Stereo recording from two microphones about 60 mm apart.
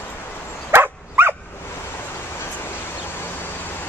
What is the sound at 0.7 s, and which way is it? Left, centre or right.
Dog, right.